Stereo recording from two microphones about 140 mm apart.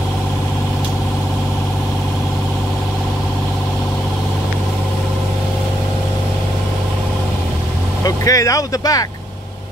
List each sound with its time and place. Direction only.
8.0 s speech: 25° left (ahead or behind)